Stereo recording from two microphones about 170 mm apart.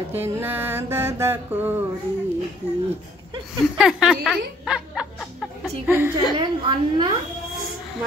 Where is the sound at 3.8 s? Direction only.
Centre (ahead or behind).